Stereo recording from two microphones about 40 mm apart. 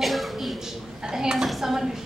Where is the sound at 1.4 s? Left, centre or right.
Centre.